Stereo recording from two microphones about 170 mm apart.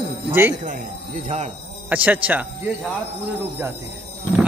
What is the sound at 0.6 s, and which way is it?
Speech, 50° right (ahead or behind).